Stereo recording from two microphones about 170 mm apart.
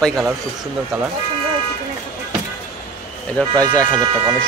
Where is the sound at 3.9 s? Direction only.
25° right (ahead or behind).